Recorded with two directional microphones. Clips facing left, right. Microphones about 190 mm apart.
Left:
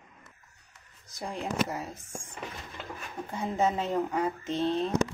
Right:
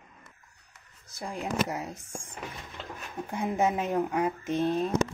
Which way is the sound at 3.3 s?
15° right (ahead or behind).